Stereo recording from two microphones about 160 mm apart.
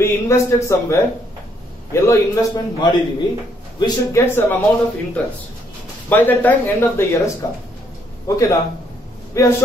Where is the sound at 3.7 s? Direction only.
20° left (ahead or behind).